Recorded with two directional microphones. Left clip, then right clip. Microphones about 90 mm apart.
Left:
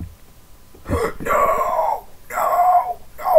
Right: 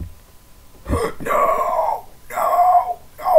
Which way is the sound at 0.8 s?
Centre (ahead or behind).